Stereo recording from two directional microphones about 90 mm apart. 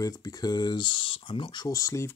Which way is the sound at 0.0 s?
40° left (ahead or behind).